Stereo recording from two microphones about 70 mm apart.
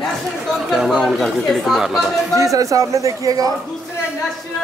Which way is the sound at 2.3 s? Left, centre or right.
Right.